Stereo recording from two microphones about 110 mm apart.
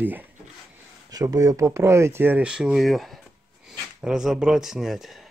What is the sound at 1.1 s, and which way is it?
Speech, 30° right (ahead or behind).